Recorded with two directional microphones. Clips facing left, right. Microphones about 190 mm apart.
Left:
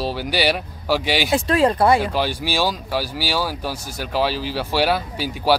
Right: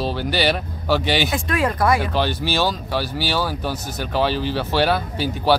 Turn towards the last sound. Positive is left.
turn(degrees=10)  # may be behind; listen again after turning